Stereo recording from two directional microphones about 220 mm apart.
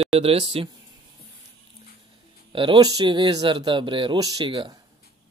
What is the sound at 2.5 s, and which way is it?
Speech, 25° right (ahead or behind).